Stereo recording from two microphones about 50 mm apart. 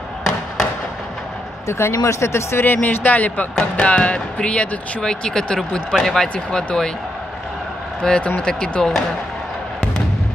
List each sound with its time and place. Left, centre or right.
1.7 s speech: left
2.6 s speech: left
3.5 s speech: left
6.2 s speech: centre
8.0 s speech: centre